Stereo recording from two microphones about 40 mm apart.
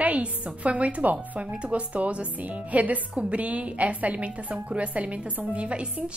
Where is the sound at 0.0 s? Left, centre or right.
Right.